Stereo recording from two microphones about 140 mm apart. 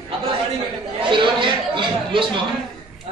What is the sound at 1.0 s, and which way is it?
Chatter, 35° right (ahead or behind).